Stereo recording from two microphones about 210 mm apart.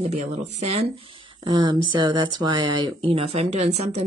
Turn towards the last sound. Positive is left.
turn(degrees=-30)  # may be behind; listen again after turning